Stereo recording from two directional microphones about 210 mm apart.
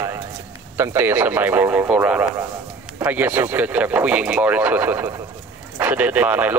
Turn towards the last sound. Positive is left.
turn(degrees=-5)  # may be behind; listen again after turning